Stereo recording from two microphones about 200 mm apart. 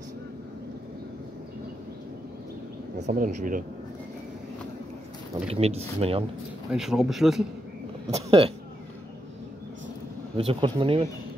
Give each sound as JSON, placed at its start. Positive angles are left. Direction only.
{"t": 3.0, "sound": "speech", "side_deg": -40}
{"t": 5.5, "sound": "speech", "side_deg": -30}
{"t": 6.7, "sound": "speech", "side_deg": 0}
{"t": 8.1, "sound": "a sound", "side_deg": -30}
{"t": 10.3, "sound": "speech", "side_deg": -25}